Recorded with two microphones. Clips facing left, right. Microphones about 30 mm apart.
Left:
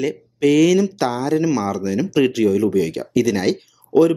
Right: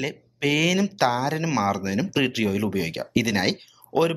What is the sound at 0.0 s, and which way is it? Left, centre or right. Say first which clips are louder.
Speech: left 8 dB; centre.